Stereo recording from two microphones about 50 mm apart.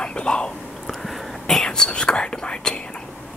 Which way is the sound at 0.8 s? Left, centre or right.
Centre.